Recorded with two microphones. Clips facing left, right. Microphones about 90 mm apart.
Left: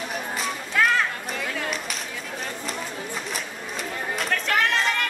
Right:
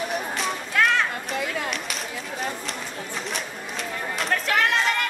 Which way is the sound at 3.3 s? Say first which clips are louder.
Right 1 dB; centre (ahead or behind).